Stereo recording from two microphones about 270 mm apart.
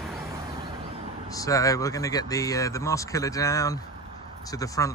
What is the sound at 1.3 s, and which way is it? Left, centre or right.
Speech, centre.